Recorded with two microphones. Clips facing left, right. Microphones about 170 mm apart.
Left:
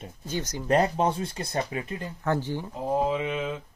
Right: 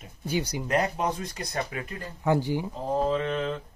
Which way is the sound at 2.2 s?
10° right (ahead or behind).